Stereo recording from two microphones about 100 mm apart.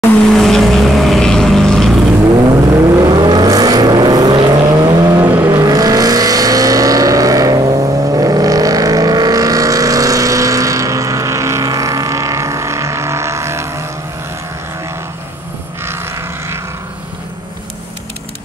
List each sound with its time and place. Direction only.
0.3 s vehicle: centre (ahead or behind)
2.5 s vehicle: 35° right (ahead or behind)
15.8 s vehicle: 25° right (ahead or behind)